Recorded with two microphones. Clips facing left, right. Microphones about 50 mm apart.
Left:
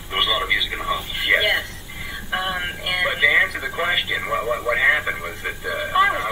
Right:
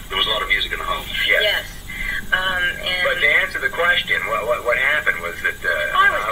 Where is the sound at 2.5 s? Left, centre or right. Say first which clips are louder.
Right 4 dB; right.